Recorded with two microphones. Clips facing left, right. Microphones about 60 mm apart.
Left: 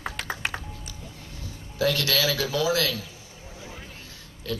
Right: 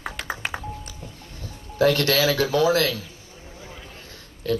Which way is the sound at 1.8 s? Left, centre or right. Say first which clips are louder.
Right 5 dB; right.